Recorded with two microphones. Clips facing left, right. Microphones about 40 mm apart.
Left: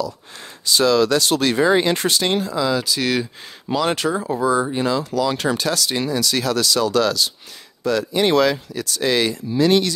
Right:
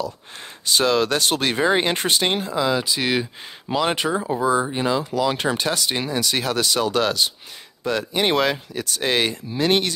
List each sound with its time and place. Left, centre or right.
0.7 s speech: right